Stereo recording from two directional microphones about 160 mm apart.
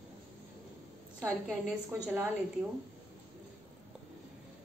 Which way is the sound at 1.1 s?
15° right (ahead or behind).